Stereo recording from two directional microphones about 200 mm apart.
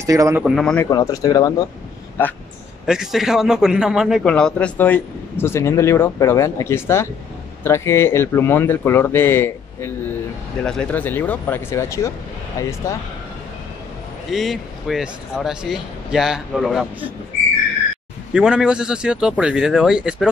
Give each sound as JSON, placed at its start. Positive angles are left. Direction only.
{"t": 0.0, "sound": "speech", "side_deg": -15}
{"t": 0.4, "sound": "a man's voice", "side_deg": 5}
{"t": 0.8, "sound": "speech", "side_deg": 20}
{"t": 2.9, "sound": "a man's voice", "side_deg": 0}
{"t": 14.3, "sound": "a man's voice", "side_deg": 0}
{"t": 18.3, "sound": "a man's voice", "side_deg": -5}